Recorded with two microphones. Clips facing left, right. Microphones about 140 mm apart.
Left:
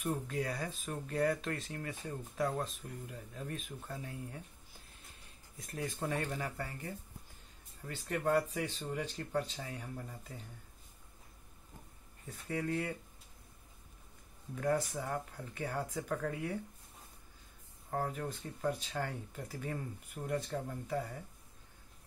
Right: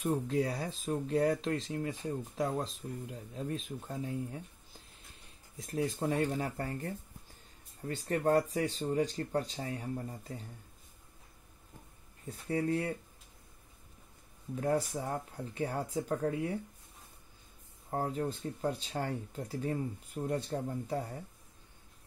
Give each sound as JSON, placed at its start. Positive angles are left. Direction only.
{"t": 0.0, "sound": "speech", "side_deg": -25}
{"t": 5.6, "sound": "speech", "side_deg": -25}
{"t": 6.4, "sound": "speech", "side_deg": -45}
{"t": 12.3, "sound": "speech", "side_deg": -35}
{"t": 14.5, "sound": "speech", "side_deg": -30}
{"t": 17.8, "sound": "speech", "side_deg": -25}